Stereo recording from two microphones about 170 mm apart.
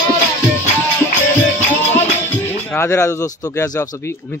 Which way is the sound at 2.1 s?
10° left (ahead or behind).